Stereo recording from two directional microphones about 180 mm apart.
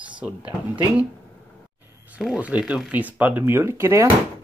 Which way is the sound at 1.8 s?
5° right (ahead or behind).